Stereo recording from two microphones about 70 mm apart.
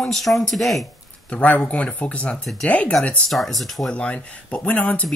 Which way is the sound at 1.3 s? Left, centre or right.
Centre.